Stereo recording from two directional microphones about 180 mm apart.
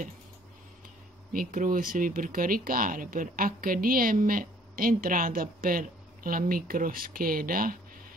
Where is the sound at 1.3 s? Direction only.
50° right (ahead or behind).